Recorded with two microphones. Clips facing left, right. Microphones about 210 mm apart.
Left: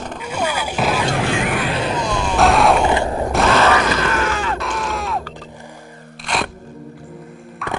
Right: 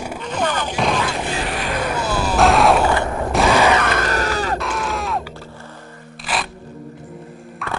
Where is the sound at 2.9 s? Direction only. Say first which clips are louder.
Left 2 dB; 25° left (ahead or behind).